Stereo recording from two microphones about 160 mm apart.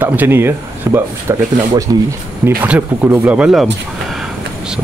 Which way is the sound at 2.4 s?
10° right (ahead or behind).